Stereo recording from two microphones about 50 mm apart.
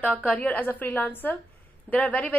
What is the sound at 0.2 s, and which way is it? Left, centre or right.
A woman's voice, left.